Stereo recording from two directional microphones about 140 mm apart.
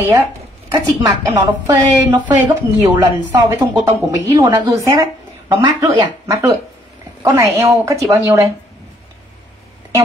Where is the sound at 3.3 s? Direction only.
25° right (ahead or behind).